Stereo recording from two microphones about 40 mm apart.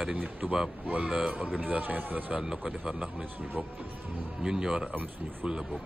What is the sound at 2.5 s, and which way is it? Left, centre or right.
Speech, right.